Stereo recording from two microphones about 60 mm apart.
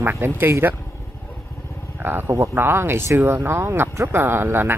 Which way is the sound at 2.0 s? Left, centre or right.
Right.